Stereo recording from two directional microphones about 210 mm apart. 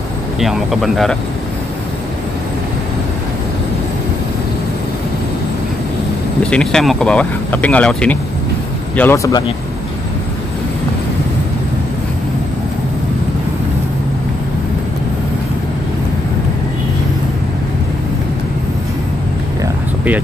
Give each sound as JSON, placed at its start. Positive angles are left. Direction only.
{"t": 0.4, "sound": "speech", "side_deg": 0}
{"t": 6.4, "sound": "speech", "side_deg": 5}